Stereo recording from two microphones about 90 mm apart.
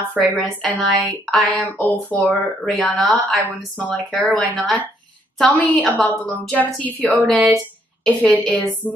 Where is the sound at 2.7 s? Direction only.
Centre (ahead or behind); by 7.3 s 15° left (ahead or behind).